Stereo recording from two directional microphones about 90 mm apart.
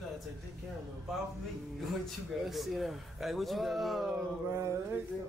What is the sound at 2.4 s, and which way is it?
A man's voice, centre (ahead or behind).